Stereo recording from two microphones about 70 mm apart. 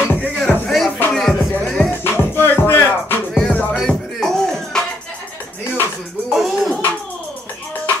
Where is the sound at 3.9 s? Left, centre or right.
Centre.